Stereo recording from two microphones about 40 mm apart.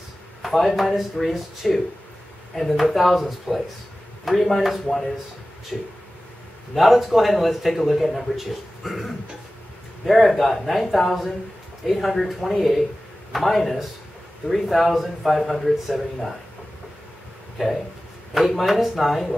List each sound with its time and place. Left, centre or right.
0.4 s speech: centre
6.7 s speech: centre
18.3 s speech: centre